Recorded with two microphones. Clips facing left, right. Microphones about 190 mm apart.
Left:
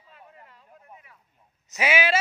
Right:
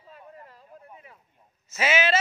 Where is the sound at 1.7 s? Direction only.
15° left (ahead or behind).